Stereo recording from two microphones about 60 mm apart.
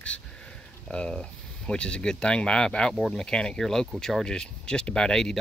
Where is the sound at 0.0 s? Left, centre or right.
Centre.